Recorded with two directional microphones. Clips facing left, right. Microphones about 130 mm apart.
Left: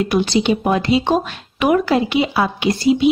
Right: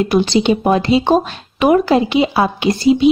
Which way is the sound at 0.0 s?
25° right (ahead or behind).